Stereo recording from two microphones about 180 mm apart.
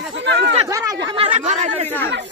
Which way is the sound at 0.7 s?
20° right (ahead or behind).